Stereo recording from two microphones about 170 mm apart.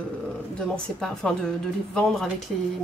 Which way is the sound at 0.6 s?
5° left (ahead or behind).